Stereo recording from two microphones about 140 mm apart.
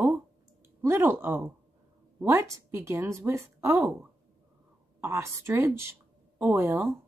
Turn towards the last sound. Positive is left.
turn(degrees=-15)  # may be behind; listen again after turning